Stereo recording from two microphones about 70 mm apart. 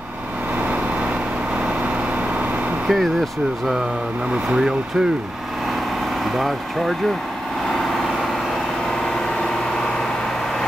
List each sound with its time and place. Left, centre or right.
0.6 s vehicle: right
2.9 s speech: centre
4.3 s speech: centre
6.3 s speech: centre
7.8 s vehicle: centre